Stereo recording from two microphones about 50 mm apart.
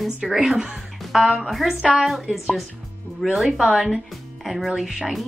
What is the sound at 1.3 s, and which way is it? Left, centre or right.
Speech, centre.